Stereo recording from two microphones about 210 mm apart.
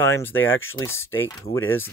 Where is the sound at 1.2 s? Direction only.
10° left (ahead or behind).